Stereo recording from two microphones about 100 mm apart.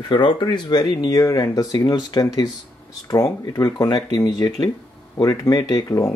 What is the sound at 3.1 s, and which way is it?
Speech, 35° left (ahead or behind).